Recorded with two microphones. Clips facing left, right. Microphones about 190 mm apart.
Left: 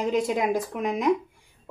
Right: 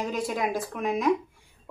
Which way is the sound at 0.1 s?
20° left (ahead or behind).